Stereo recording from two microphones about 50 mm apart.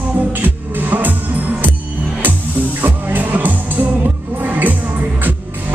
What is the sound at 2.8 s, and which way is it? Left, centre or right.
Music, right.